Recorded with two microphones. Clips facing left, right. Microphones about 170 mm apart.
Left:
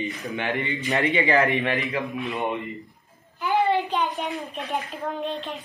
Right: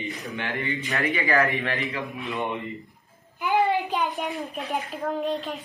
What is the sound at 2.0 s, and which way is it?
Speech, centre (ahead or behind).